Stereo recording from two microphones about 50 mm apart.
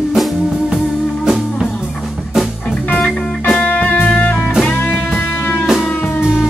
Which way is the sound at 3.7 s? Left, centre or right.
Left.